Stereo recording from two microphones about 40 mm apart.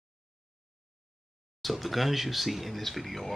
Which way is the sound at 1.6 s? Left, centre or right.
Centre.